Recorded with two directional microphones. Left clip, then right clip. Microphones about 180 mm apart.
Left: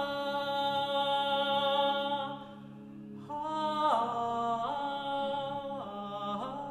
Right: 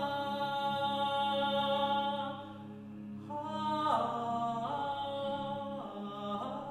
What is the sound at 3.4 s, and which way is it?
Music, 25° left (ahead or behind).